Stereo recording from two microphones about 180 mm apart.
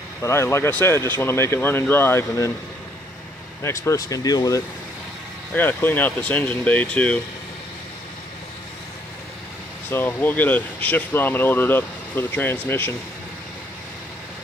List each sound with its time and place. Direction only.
0.2 s speech: 15° left (ahead or behind)
3.6 s speech: 15° left (ahead or behind)
9.8 s speech: 10° left (ahead or behind)